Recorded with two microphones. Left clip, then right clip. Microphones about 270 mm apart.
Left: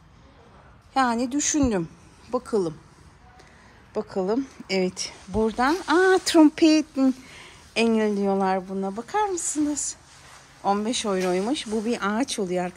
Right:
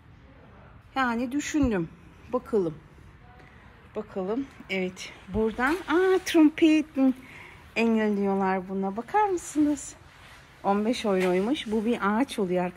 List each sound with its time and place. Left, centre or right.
0.9 s speech: centre
3.9 s speech: left; by 12.7 s centre